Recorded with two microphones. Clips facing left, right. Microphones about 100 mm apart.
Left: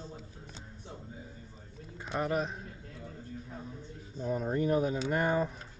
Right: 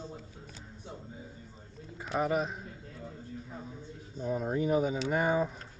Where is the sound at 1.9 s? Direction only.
5° right (ahead or behind).